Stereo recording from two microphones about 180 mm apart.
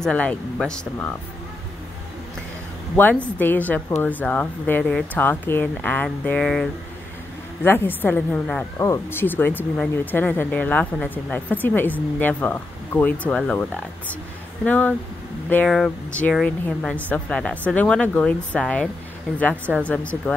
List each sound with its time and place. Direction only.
0.0 s a woman's voice: 5° left (ahead or behind)
3.0 s a woman's voice: 10° left (ahead or behind)